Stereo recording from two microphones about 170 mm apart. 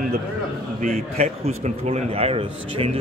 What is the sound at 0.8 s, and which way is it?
A man's voice, 50° right (ahead or behind).